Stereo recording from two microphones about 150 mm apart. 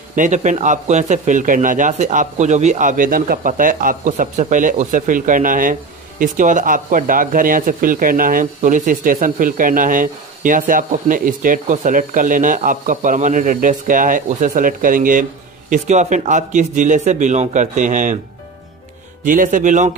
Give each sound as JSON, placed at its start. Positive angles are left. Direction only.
{"t": 0.1, "sound": "a man's voice", "side_deg": -55}
{"t": 19.2, "sound": "a man's voice", "side_deg": -65}